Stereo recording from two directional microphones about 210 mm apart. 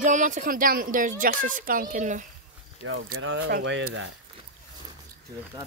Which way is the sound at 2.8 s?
75° right (ahead or behind).